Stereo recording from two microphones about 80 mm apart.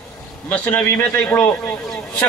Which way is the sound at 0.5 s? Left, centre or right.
Left.